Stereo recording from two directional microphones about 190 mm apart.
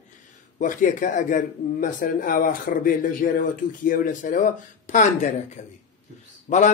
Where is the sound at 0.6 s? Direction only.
45° left (ahead or behind).